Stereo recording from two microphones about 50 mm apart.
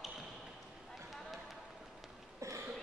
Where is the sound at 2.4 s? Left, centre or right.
Right.